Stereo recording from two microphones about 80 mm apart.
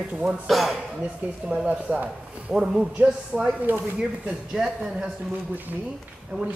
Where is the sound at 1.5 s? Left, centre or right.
Centre.